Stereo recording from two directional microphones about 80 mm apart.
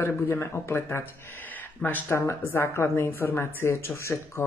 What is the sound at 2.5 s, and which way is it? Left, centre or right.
A woman's voice, left.